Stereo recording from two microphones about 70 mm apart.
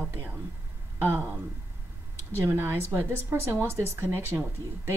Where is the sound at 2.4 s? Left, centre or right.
Right.